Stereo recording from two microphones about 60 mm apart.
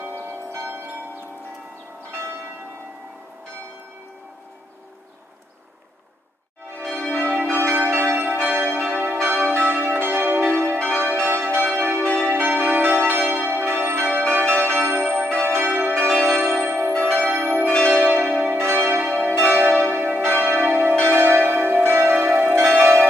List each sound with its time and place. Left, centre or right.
0.0 s change ringing: right
7.5 s change ringing: right
13.6 s church bell: right
13.8 s change ringing: right
15.1 s change ringing: right
15.5 s change ringing: right
15.9 s change ringing: right
19.8 s church bell: right
21.0 s change ringing: right